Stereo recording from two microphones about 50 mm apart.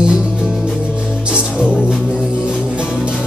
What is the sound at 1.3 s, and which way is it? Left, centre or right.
Music, right.